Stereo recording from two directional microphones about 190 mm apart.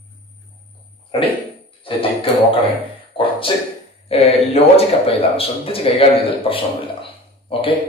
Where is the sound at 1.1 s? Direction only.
30° left (ahead or behind).